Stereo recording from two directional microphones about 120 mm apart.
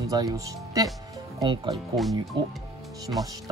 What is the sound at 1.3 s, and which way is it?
Speech, 40° right (ahead or behind).